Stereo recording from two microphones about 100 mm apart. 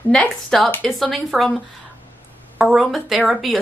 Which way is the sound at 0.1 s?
5° left (ahead or behind).